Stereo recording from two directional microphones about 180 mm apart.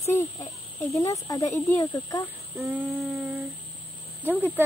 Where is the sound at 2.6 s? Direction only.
Centre (ahead or behind).